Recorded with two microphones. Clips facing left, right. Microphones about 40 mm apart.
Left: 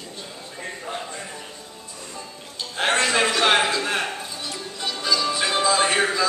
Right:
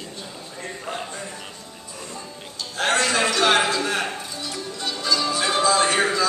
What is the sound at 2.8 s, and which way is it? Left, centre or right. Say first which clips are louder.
Music: even; centre.